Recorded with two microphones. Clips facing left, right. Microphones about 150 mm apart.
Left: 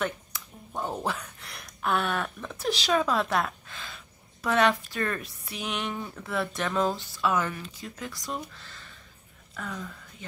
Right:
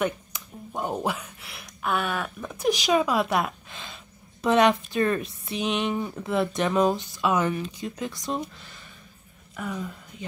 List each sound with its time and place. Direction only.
0.0 s speech: 15° right (ahead or behind)
2.6 s a woman's voice: 15° right (ahead or behind)